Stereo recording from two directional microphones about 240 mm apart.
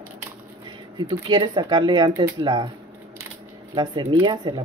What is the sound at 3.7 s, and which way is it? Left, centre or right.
Speech, centre.